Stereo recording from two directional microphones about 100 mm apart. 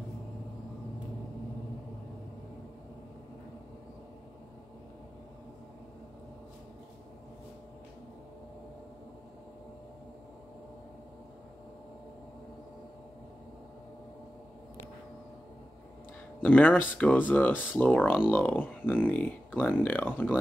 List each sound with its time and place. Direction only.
16.3 s speech: 15° left (ahead or behind)